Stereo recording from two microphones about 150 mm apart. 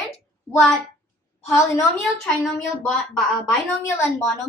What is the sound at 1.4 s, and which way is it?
Speech, 20° left (ahead or behind).